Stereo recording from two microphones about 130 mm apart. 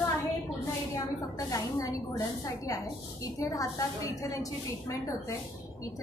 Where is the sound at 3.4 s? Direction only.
25° left (ahead or behind).